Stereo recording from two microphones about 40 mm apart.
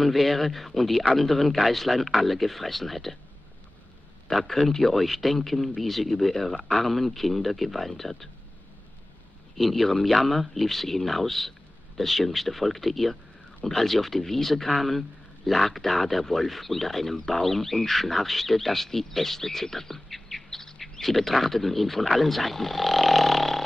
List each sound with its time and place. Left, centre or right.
0.0 s a man's voice: centre
4.4 s a man's voice: centre
9.6 s a man's voice: centre